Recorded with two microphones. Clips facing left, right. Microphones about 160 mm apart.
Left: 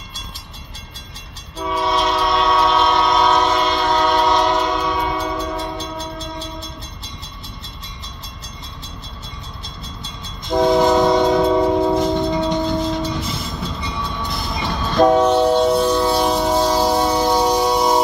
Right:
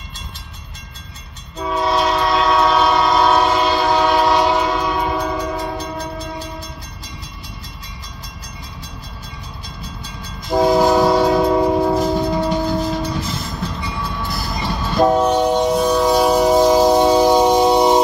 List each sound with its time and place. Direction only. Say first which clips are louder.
1.6 s train: right 1 dB; 5° left (ahead or behind)
1.9 s train: right 2 dB; 5° right (ahead or behind)
5.8 s train: right 2 dB; 25° left (ahead or behind)
10.5 s train: right 1 dB; 5° right (ahead or behind); by 18.0 s 20° right (ahead or behind)